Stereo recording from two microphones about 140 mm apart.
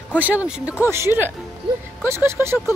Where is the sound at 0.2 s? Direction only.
10° right (ahead or behind).